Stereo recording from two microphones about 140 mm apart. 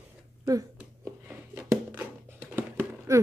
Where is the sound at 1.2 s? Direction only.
10° right (ahead or behind).